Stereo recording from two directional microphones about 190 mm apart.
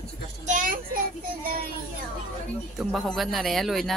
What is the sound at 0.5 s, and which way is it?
Speech, 45° right (ahead or behind).